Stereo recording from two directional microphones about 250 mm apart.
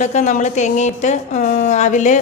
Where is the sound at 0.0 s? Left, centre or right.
Left.